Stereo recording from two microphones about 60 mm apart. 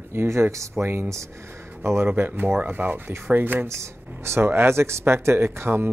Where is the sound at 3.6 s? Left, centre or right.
Right.